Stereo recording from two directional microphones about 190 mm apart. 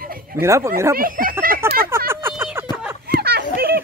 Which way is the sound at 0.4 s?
15° right (ahead or behind).